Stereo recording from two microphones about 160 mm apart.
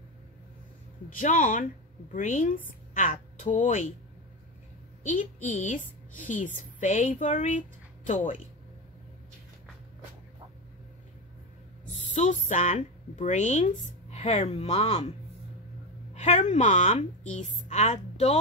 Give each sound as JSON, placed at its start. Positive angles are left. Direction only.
{"t": 1.2, "sound": "a woman's voice", "side_deg": 50}
{"t": 5.0, "sound": "a woman's voice", "side_deg": 55}
{"t": 11.9, "sound": "speech", "side_deg": 45}
{"t": 16.2, "sound": "a woman's voice", "side_deg": 45}